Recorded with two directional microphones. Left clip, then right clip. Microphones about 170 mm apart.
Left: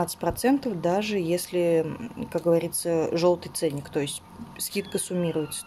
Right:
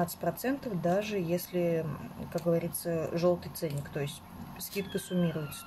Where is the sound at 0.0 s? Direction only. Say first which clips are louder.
Left 7 dB; 50° left (ahead or behind).